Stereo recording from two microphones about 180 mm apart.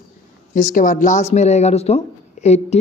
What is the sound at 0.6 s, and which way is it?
Speech, 45° left (ahead or behind).